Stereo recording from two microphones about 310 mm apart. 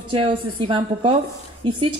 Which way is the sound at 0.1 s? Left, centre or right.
Centre.